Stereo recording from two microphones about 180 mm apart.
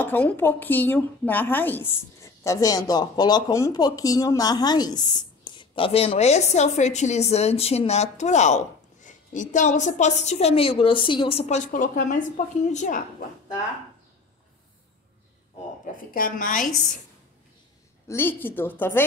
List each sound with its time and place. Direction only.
0.0 s a woman's voice: 10° left (ahead or behind); by 13.0 s 45° left (ahead or behind)
15.8 s a woman's voice: 50° left (ahead or behind)
18.0 s a woman's voice: 10° left (ahead or behind)